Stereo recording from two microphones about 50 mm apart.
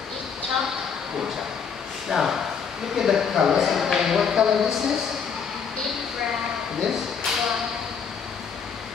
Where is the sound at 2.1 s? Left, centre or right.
Centre.